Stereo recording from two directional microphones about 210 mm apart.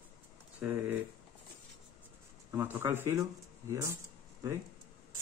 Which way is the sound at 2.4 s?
10° right (ahead or behind).